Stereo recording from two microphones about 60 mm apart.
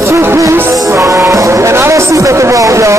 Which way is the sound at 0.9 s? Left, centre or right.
Right.